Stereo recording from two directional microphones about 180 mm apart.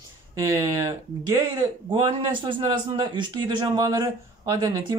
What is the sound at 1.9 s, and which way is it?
A man's voice, 25° right (ahead or behind).